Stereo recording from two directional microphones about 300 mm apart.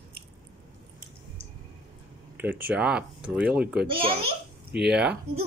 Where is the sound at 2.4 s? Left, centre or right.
Centre.